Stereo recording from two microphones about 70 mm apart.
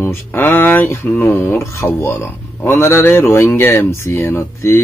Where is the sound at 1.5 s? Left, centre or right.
Left.